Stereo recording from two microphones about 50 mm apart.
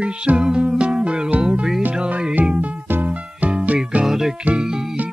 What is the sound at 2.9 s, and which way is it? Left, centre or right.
Music, right.